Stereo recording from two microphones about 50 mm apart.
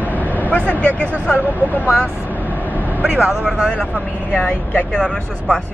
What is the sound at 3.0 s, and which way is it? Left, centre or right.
Speech, right.